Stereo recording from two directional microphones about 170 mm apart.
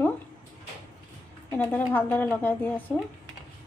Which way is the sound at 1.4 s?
15° left (ahead or behind).